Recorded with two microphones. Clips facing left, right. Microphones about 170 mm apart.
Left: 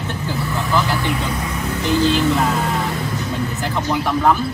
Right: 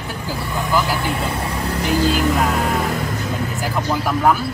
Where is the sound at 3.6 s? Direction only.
5° right (ahead or behind).